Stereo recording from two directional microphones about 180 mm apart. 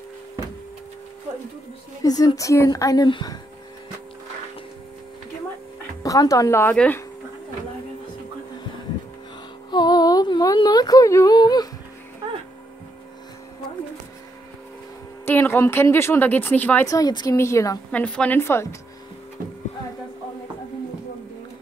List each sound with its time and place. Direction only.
2.0 s a woman's voice: 20° left (ahead or behind)
6.0 s speech: 20° left (ahead or behind)
9.7 s speech: 25° left (ahead or behind)
15.2 s speech: 10° left (ahead or behind)